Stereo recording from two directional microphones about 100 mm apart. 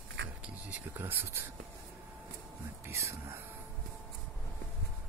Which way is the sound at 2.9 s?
30° right (ahead or behind).